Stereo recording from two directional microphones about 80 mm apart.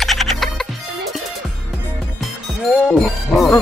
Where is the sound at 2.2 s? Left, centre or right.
Centre.